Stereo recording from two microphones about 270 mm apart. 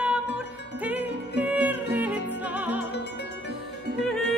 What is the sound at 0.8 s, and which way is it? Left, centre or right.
Music, centre.